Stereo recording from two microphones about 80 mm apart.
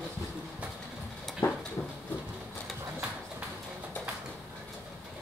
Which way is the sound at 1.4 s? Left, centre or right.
Left.